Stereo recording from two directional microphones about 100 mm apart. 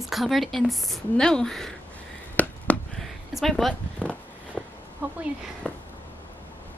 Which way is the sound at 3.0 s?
Centre (ahead or behind).